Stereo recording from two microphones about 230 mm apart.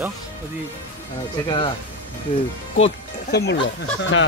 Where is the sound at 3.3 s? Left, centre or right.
Left.